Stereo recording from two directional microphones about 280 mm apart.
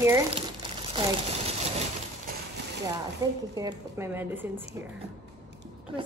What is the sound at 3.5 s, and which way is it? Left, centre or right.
Speech, centre.